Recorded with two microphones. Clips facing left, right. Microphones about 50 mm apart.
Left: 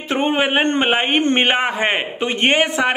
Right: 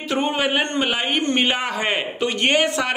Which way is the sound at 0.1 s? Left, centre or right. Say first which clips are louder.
Left 4 dB; left.